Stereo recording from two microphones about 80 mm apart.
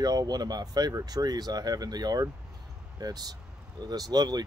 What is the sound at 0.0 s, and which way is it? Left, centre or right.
Speech, right.